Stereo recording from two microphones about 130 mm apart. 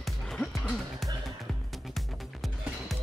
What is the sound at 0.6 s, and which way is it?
Speech, 5° right (ahead or behind).